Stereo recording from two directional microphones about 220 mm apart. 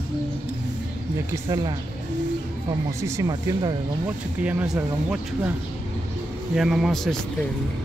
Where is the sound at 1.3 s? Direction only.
20° right (ahead or behind).